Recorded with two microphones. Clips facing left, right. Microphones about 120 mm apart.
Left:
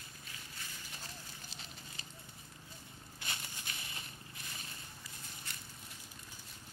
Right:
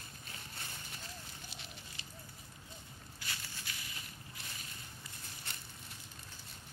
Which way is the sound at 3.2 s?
25° left (ahead or behind).